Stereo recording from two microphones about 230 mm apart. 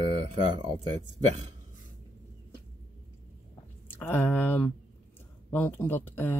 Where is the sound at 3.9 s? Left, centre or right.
Centre.